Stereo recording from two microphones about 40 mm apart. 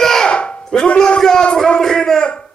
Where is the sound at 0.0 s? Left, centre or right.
Centre.